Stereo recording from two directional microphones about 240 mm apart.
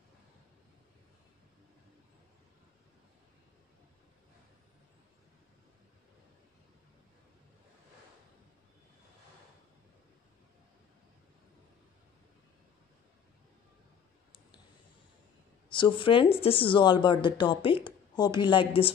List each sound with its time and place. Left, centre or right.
15.7 s a woman's voice: centre